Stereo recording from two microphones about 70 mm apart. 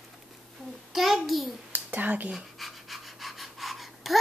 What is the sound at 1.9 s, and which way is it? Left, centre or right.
Speech, right.